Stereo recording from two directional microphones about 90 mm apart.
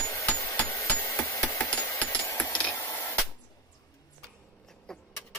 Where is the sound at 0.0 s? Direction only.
35° left (ahead or behind).